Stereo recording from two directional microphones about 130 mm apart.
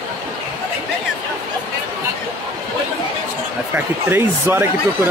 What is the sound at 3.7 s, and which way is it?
Speech, 15° right (ahead or behind).